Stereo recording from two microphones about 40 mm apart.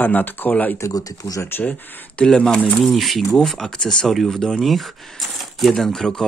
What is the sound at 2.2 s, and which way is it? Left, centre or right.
Speech, centre.